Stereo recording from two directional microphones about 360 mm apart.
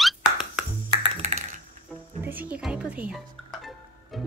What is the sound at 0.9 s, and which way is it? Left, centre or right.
Music, centre.